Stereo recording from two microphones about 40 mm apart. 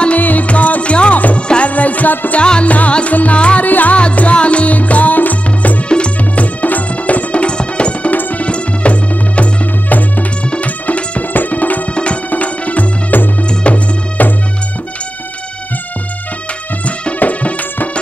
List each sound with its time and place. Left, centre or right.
0.2 s music: left
3.6 s music: left
3.9 s music: left
5.9 s music: left
8.1 s music: left
8.5 s music: left
10.5 s music: left
11.9 s music: left
17.2 s music: left